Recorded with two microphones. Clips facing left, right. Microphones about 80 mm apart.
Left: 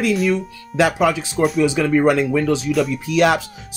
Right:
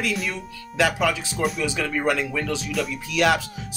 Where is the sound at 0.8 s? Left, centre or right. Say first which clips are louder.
Left 5 dB; left.